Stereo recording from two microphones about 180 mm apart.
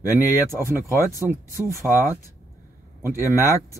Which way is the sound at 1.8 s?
Centre (ahead or behind).